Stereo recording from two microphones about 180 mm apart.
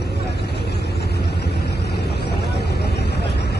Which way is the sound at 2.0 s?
65° left (ahead or behind).